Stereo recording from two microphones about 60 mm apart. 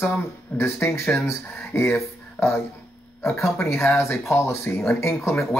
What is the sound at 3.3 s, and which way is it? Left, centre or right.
Speech, left.